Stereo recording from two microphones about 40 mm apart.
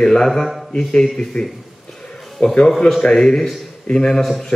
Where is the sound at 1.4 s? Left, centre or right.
Left.